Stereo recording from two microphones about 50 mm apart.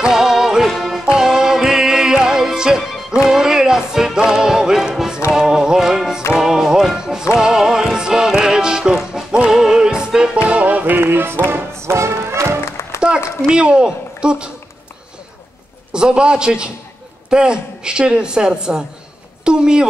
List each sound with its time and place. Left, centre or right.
0.1 s music: centre
10.5 s music: right
11.0 s music: right
11.8 s music: right
12.6 s music: left
13.5 s speech: centre
15.9 s a woman's voice: centre